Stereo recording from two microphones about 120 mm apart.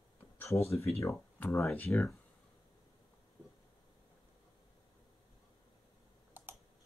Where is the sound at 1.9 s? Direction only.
5° left (ahead or behind).